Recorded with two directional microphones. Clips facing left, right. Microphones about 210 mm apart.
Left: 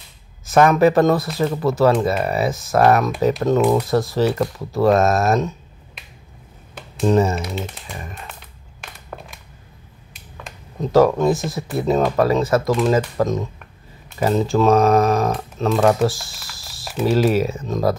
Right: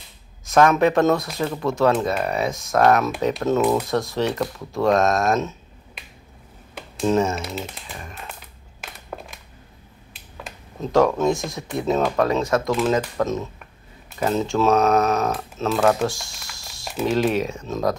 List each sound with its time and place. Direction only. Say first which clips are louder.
0.5 s speech: left 3 dB; 5° left (ahead or behind)
8.8 s a sound: right 1 dB; centre (ahead or behind)
10.1 s speech: even; centre (ahead or behind)